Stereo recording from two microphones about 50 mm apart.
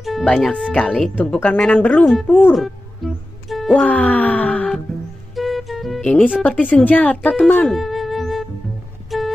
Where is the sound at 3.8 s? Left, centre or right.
Left.